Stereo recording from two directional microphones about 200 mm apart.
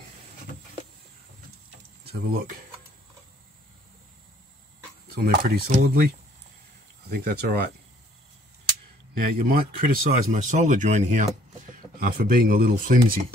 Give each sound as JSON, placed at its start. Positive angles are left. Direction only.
{"t": 2.0, "sound": "speech", "side_deg": -50}
{"t": 5.1, "sound": "speech", "side_deg": -45}
{"t": 9.1, "sound": "speech", "side_deg": -45}